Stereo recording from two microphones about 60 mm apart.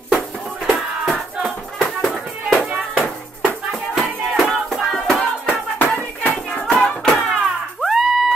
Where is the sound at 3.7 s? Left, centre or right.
Centre.